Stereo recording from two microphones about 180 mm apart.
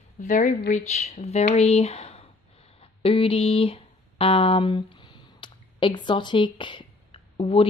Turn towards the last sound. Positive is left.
turn(degrees=30)  # may be behind; listen again after turning